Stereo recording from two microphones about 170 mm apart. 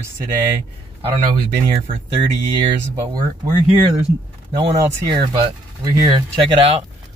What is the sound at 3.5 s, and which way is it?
Speech, 40° right (ahead or behind).